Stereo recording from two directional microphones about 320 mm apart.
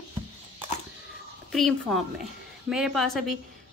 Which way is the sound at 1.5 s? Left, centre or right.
Centre.